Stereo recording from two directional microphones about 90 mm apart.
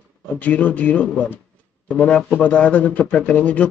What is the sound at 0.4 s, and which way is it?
A man's voice, 15° left (ahead or behind).